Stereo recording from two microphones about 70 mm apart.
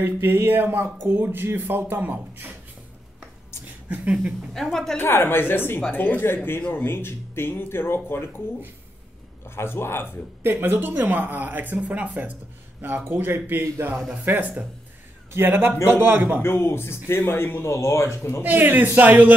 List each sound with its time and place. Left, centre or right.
0.0 s speech: right
4.6 s a woman's voice: centre
5.0 s speech: left
9.6 s speech: left
10.4 s speech: right
16.4 s speech: left
18.4 s speech: right